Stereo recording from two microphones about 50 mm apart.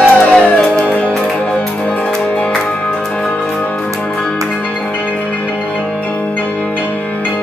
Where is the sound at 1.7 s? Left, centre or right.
Left.